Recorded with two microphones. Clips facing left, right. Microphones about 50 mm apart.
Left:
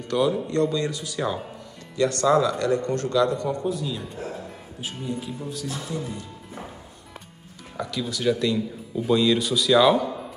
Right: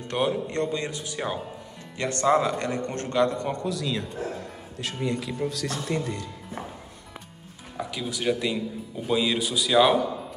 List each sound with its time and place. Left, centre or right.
0.1 s speech: right
3.6 s speech: right
7.9 s speech: centre